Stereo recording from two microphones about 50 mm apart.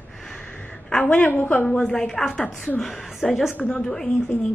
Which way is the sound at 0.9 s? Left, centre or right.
Left.